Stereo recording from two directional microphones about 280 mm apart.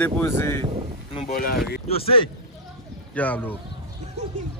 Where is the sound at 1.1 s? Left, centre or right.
Left.